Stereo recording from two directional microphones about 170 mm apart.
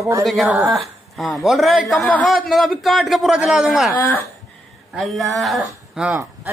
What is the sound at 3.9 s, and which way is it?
Speech, 15° left (ahead or behind).